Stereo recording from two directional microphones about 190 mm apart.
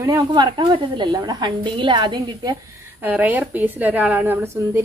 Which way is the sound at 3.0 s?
10° right (ahead or behind).